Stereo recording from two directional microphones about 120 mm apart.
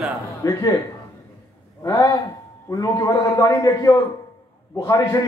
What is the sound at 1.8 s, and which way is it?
A man's voice, 30° left (ahead or behind).